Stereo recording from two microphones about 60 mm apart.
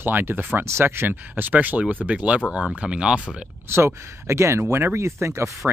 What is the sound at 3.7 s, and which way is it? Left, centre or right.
Speech, right.